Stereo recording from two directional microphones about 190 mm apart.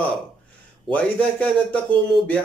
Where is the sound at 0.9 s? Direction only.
5° left (ahead or behind).